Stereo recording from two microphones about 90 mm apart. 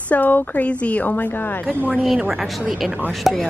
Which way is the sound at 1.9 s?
5° right (ahead or behind).